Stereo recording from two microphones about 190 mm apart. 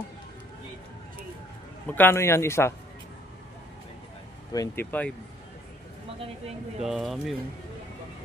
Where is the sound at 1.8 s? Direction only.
10° left (ahead or behind).